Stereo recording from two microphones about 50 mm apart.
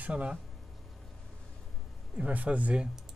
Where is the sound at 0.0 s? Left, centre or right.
Right.